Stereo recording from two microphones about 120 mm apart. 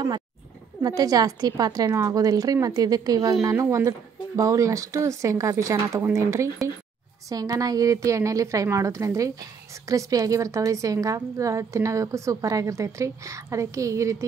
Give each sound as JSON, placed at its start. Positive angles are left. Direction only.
{"t": 0.8, "sound": "a woman's voice", "side_deg": -30}